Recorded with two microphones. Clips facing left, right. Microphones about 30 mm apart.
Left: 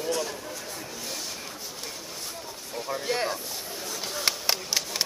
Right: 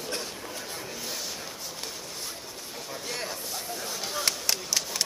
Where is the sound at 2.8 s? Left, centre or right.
Centre.